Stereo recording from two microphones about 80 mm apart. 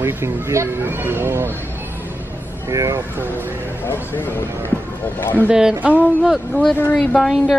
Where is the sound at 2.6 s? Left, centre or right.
Right.